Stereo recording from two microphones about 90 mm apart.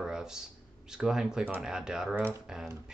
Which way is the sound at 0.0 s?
5° right (ahead or behind).